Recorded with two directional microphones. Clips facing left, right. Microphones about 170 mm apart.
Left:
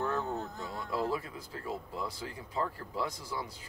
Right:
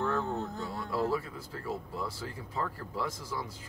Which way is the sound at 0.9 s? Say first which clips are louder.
Right 2 dB; 15° left (ahead or behind).